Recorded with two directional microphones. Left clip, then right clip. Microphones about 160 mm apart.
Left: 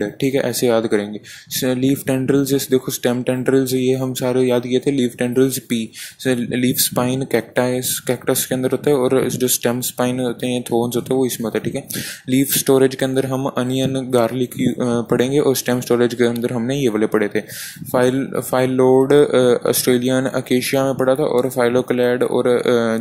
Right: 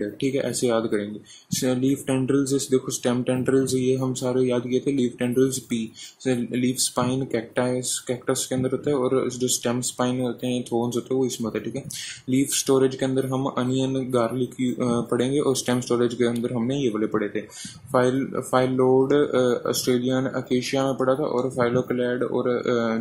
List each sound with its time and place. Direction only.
0.0 s speech: 40° left (ahead or behind)